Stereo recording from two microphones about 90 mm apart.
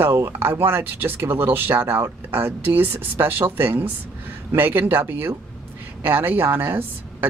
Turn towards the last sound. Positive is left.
turn(degrees=-25)  # may be behind; listen again after turning